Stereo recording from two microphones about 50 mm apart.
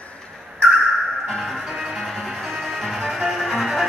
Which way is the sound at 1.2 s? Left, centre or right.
Centre.